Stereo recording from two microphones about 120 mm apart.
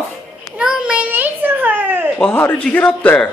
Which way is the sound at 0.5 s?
5° right (ahead or behind).